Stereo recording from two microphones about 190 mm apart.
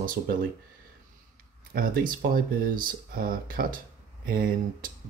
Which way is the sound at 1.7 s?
50° right (ahead or behind).